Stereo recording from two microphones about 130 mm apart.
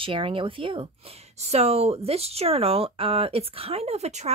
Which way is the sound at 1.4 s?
55° right (ahead or behind).